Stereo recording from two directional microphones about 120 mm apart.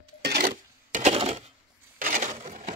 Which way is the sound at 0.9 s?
70° right (ahead or behind).